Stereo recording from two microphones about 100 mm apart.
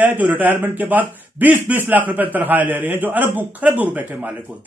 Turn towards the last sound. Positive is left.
turn(degrees=-15)  # may be behind; listen again after turning